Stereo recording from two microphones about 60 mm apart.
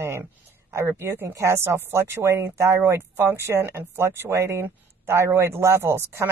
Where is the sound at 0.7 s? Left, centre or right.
Right.